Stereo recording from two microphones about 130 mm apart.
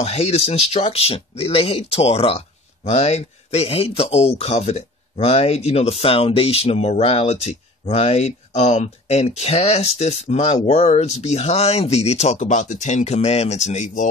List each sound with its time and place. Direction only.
0.0 s speech: 55° left (ahead or behind)